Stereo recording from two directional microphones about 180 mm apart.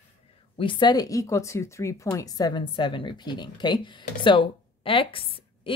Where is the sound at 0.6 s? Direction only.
25° left (ahead or behind).